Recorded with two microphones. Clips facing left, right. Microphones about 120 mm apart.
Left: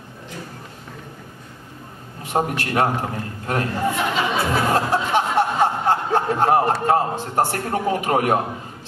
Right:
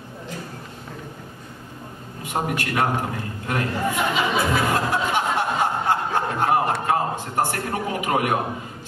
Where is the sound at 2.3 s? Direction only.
35° left (ahead or behind).